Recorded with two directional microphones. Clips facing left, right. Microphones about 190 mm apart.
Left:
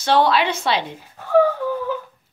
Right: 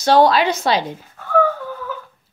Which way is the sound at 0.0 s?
40° right (ahead or behind).